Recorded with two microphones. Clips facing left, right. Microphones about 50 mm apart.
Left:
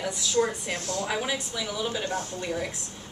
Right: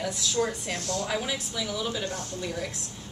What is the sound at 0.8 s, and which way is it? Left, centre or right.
Speech, left.